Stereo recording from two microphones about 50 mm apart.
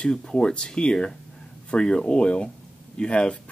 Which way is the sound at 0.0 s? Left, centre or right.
Centre.